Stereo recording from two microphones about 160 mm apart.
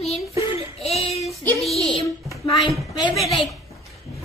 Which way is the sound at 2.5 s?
Centre (ahead or behind).